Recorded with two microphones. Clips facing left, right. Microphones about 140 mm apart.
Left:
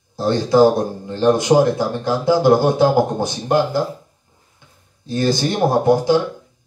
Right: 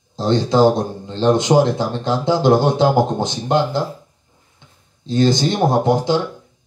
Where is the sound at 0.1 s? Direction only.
20° right (ahead or behind).